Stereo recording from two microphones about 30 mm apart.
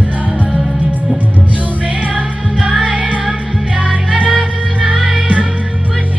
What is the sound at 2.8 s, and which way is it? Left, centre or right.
Music, right.